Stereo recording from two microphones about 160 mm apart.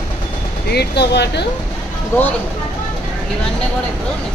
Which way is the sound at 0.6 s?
90° left.